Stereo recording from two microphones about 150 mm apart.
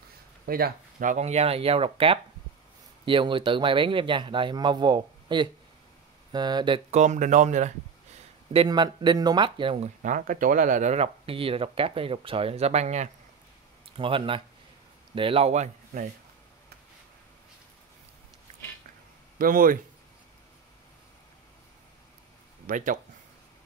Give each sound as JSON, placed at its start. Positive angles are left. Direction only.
{"t": 0.5, "sound": "speech", "side_deg": -85}
{"t": 6.9, "sound": "speech", "side_deg": -55}
{"t": 8.5, "sound": "speech", "side_deg": -30}
{"t": 10.0, "sound": "speech", "side_deg": -60}
{"t": 13.9, "sound": "speech", "side_deg": -35}
{"t": 19.3, "sound": "speech", "side_deg": -70}
{"t": 22.7, "sound": "speech", "side_deg": -60}